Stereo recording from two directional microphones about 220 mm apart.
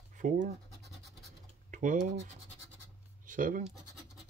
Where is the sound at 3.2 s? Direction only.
35° right (ahead or behind).